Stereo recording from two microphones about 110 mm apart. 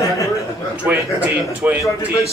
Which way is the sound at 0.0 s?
30° left (ahead or behind).